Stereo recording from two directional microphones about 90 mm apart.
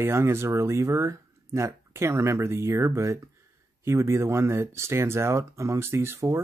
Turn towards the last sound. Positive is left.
turn(degrees=-30)  # may be behind; listen again after turning